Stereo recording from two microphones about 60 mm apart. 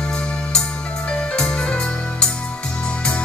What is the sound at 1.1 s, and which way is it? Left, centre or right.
Music, centre.